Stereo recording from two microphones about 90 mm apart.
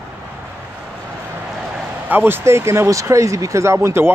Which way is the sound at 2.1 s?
25° right (ahead or behind).